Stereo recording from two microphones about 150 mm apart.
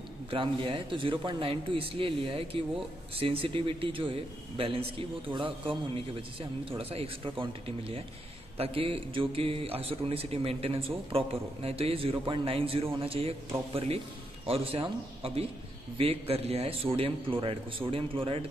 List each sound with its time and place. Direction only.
0.3 s a man's voice: 35° right (ahead or behind)
6.8 s a man's voice: 40° right (ahead or behind)